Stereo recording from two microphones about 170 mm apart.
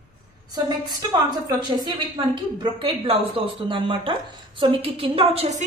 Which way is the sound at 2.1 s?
30° right (ahead or behind).